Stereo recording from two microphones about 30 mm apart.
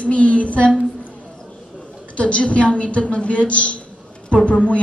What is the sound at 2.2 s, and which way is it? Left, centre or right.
A woman's voice, left.